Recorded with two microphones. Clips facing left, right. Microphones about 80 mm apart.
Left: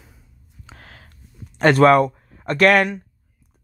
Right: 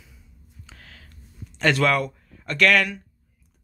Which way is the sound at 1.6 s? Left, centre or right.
Left.